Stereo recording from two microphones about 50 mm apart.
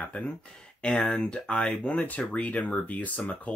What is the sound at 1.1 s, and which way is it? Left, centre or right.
Speech, centre.